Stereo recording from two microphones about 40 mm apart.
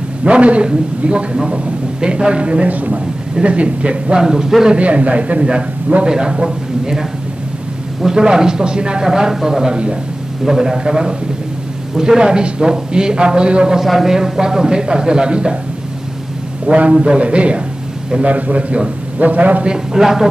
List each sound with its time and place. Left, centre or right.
0.2 s a man's voice: right
4.7 s a man's voice: right
13.7 s speech: centre
16.6 s a man's voice: right
19.9 s speech: centre